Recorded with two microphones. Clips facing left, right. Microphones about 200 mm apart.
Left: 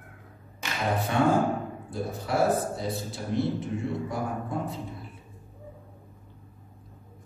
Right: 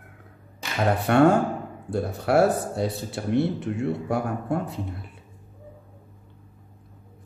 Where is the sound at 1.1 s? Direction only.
65° right (ahead or behind).